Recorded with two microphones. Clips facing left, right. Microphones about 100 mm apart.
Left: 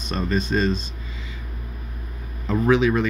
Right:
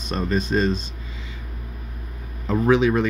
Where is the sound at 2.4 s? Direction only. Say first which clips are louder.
Right 1 dB; 25° right (ahead or behind).